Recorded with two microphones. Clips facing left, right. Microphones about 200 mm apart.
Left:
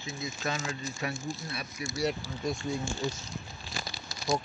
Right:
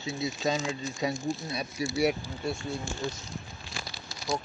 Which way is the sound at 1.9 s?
10° right (ahead or behind).